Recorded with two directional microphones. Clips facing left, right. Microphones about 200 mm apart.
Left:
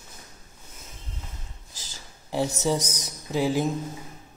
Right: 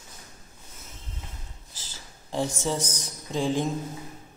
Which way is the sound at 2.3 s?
10° left (ahead or behind).